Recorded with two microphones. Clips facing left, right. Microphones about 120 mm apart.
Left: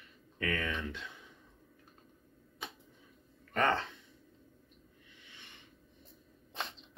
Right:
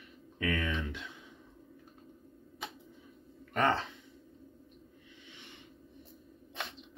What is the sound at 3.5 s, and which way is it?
Speech, 15° right (ahead or behind).